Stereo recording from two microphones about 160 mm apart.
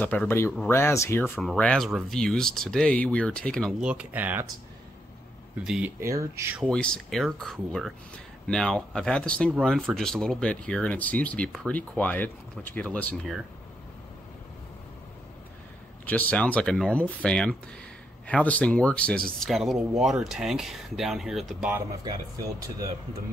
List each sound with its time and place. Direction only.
0.0 s speech: 10° left (ahead or behind)
1.4 s speech: 5° left (ahead or behind)
3.8 s speech: 10° right (ahead or behind)
5.6 s speech: 5° right (ahead or behind)
6.6 s speech: 5° left (ahead or behind)
16.1 s speech: 10° left (ahead or behind); by 21.8 s 5° right (ahead or behind)